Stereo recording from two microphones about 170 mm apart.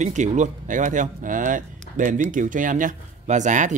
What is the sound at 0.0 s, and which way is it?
Speech, 45° right (ahead or behind).